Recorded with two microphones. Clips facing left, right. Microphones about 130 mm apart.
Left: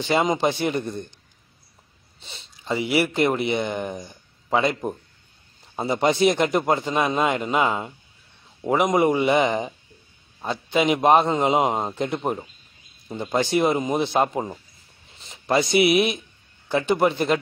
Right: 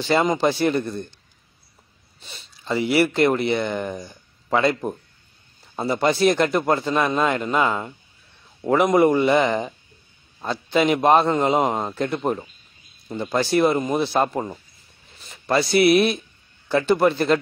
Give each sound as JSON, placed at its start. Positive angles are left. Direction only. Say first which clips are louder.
{"t": 0.1, "sound": "a man's voice", "louder": "right 2 dB", "side_deg": 15}
{"t": 2.1, "sound": "a sound", "louder": "even", "side_deg": 25}
{"t": 2.7, "sound": "a man's voice", "louder": "right 3 dB", "side_deg": 10}
{"t": 5.8, "sound": "a man's voice", "louder": "even", "side_deg": 20}